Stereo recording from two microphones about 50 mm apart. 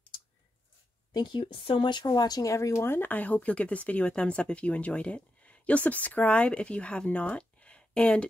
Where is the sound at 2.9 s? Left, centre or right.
Left.